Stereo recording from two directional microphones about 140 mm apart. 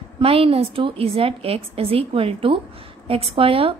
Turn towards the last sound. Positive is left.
turn(degrees=-40)  # may be behind; listen again after turning